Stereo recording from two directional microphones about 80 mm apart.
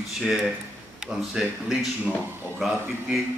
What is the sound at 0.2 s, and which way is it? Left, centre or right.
A man's voice, centre.